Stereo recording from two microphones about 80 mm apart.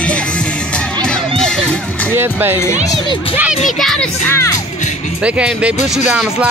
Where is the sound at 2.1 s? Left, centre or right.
Right.